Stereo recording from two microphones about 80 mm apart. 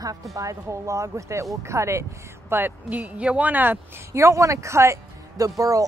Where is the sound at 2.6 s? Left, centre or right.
Right.